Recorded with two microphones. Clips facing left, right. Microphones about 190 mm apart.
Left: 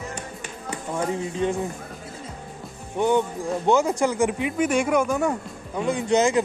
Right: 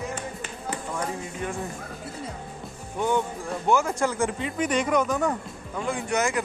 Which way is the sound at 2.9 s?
20° left (ahead or behind).